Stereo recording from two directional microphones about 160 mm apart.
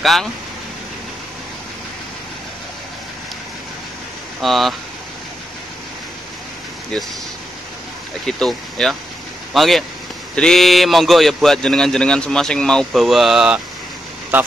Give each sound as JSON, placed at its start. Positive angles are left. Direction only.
{"t": 0.0, "sound": "a man's voice", "side_deg": 0}
{"t": 4.4, "sound": "a man's voice", "side_deg": 0}
{"t": 8.3, "sound": "a man's voice", "side_deg": 5}